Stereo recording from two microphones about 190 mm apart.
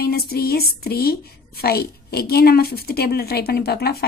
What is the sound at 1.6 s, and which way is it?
A woman's voice, 55° left (ahead or behind).